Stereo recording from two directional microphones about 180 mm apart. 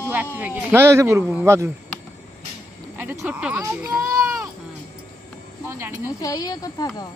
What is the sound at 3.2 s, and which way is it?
Speech, 10° right (ahead or behind).